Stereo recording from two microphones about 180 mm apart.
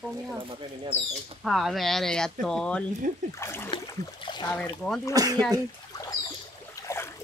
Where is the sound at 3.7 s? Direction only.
25° left (ahead or behind).